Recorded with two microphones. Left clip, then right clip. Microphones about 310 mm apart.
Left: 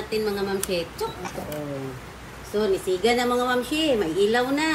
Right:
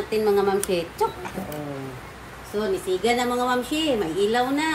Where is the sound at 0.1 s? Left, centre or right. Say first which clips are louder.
Right 5 dB; centre.